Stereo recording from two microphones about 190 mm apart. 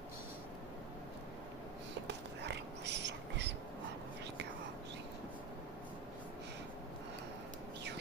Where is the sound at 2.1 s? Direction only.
65° right (ahead or behind).